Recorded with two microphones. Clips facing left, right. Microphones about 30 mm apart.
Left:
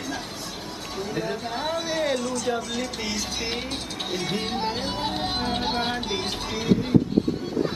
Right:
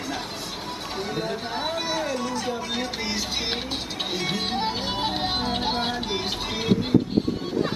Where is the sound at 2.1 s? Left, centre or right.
Right.